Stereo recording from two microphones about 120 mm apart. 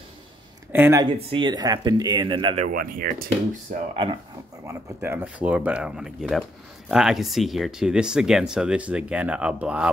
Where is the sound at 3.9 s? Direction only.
45° right (ahead or behind).